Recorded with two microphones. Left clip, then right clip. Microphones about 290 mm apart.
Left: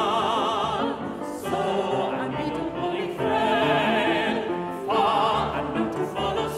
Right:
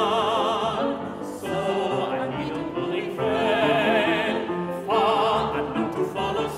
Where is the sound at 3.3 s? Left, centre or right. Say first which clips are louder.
Even; centre.